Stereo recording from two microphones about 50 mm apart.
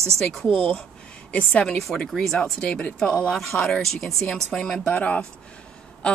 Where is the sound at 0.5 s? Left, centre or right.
Centre.